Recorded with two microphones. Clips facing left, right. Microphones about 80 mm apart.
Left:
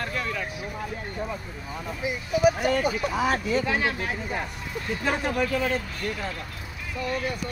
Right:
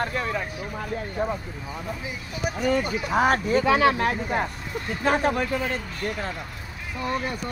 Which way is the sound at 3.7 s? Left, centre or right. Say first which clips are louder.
Right 7 dB; right.